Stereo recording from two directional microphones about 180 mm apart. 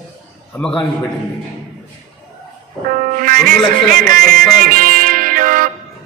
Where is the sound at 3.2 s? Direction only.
50° right (ahead or behind).